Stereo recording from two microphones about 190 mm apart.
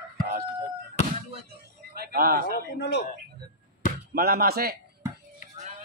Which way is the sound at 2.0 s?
50° right (ahead or behind).